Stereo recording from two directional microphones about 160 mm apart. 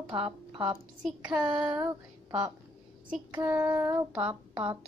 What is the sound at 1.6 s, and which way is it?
Child singing, 20° right (ahead or behind).